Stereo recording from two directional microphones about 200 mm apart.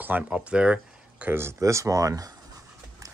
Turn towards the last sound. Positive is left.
turn(degrees=-15)  # may be behind; listen again after turning